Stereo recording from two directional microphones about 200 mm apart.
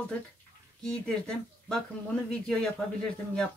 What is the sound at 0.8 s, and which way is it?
A woman's voice, 5° left (ahead or behind).